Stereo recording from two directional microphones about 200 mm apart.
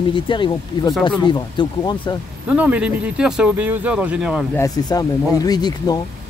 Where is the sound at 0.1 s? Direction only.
25° left (ahead or behind).